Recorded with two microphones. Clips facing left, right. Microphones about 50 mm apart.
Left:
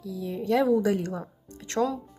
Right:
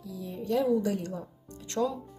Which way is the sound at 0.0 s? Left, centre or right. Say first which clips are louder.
Left 6 dB; left.